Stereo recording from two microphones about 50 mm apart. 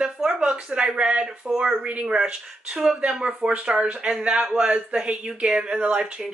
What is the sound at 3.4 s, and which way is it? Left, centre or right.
Speech, right.